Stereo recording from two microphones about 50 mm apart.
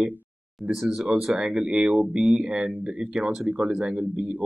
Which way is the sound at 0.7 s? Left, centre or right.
Centre.